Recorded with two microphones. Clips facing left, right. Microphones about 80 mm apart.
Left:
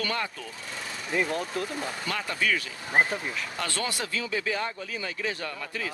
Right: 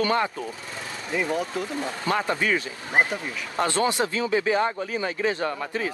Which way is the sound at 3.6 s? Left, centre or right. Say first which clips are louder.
Right 11 dB; right.